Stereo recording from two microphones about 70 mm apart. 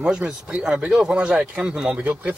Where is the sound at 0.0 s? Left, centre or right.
Centre.